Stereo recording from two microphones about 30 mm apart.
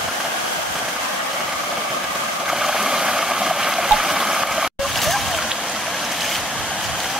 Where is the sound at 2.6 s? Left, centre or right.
Centre.